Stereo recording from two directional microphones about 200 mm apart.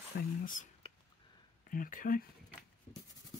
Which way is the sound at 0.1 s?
50° left (ahead or behind).